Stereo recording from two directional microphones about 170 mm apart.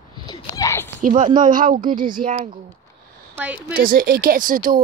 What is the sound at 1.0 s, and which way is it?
A woman's voice, 50° right (ahead or behind).